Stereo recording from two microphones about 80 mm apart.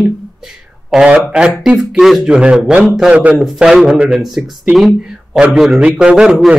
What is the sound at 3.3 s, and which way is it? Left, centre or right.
Speech, centre.